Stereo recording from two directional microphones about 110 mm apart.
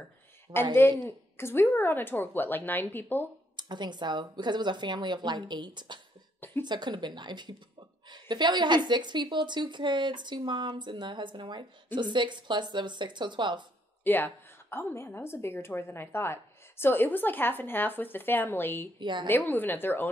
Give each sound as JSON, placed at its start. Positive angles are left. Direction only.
{"t": 0.7, "sound": "a woman's voice", "side_deg": 20}
{"t": 3.5, "sound": "a woman's voice", "side_deg": -45}
{"t": 14.0, "sound": "a woman's voice", "side_deg": 20}
{"t": 18.9, "sound": "a woman's voice", "side_deg": -45}
{"t": 19.2, "sound": "a woman's voice", "side_deg": 15}